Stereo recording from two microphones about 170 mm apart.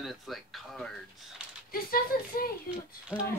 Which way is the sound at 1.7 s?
60° left (ahead or behind).